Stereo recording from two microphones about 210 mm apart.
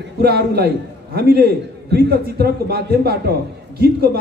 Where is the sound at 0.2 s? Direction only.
50° right (ahead or behind).